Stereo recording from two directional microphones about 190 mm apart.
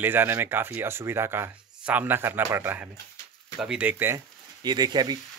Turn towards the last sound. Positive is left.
turn(degrees=-20)  # may be behind; listen again after turning